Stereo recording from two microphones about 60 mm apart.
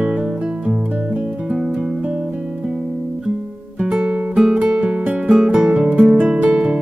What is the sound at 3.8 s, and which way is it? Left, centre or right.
Music, centre.